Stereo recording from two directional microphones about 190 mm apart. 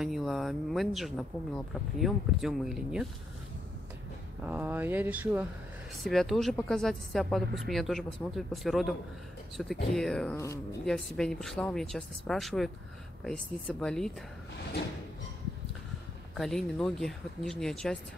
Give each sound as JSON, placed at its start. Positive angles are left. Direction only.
{"t": 0.0, "sound": "speech", "side_deg": 0}
{"t": 4.4, "sound": "speech", "side_deg": -10}
{"t": 10.3, "sound": "speech", "side_deg": 15}
{"t": 10.9, "sound": "speech", "side_deg": 0}
{"t": 16.3, "sound": "speech", "side_deg": 0}